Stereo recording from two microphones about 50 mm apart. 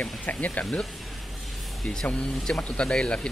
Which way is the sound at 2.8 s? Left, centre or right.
Centre.